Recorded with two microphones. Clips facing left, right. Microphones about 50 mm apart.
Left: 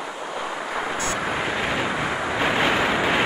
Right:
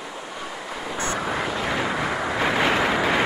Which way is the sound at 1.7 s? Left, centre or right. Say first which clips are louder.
Even; centre.